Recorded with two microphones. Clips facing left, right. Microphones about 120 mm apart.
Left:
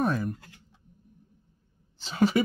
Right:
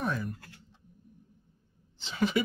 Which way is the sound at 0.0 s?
45° left (ahead or behind).